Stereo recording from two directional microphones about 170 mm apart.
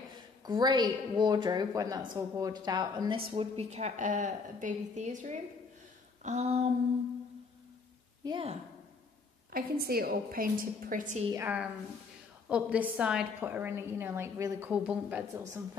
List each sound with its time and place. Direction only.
0.5 s a woman's voice: 25° right (ahead or behind)
3.3 s a woman's voice: 40° right (ahead or behind)
6.2 s a sound: 40° right (ahead or behind)
8.2 s a woman's voice: 25° right (ahead or behind)
9.5 s a woman's voice: 60° right (ahead or behind)
11.3 s a woman's voice: 10° right (ahead or behind)